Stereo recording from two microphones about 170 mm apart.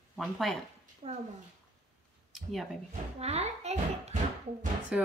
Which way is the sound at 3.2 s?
40° right (ahead or behind).